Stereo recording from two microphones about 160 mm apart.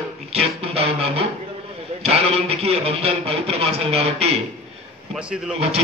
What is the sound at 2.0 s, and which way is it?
A man's voice, 40° right (ahead or behind).